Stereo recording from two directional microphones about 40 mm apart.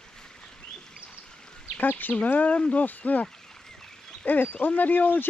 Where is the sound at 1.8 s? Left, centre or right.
Left.